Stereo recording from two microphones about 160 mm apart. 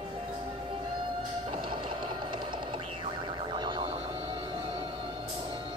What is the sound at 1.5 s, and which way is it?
Music, 30° right (ahead or behind).